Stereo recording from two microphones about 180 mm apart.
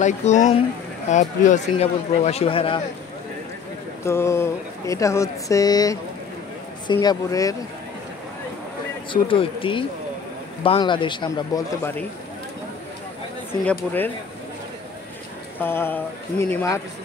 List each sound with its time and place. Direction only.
0.0 s a man's voice: 40° left (ahead or behind)
4.0 s speech: 15° left (ahead or behind)
9.1 s speech: 30° left (ahead or behind)
11.8 s speech: 10° left (ahead or behind)
13.5 s speech: 10° left (ahead or behind)
15.6 s speech: 10° left (ahead or behind)